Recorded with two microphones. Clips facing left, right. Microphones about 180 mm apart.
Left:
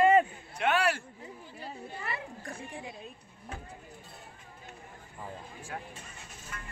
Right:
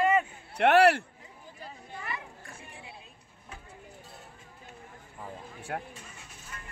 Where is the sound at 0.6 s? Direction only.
70° right (ahead or behind).